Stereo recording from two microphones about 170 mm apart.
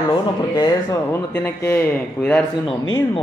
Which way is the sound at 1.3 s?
10° left (ahead or behind).